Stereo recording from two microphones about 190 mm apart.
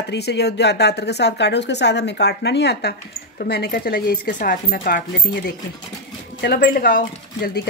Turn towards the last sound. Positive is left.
turn(degrees=50)  # may be behind; listen again after turning